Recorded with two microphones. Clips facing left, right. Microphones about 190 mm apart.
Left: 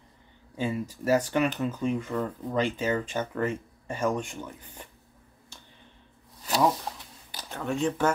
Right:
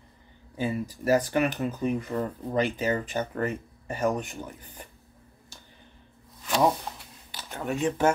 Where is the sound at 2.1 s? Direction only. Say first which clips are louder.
Even; 15° right (ahead or behind).